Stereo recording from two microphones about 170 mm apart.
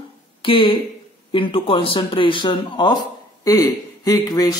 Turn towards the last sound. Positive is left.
turn(degrees=20)  # may be behind; listen again after turning